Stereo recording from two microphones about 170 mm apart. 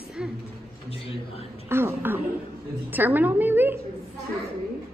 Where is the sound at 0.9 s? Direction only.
35° left (ahead or behind).